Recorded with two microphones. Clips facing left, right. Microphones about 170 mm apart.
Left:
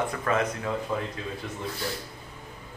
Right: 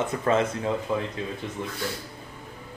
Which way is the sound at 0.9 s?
15° right (ahead or behind).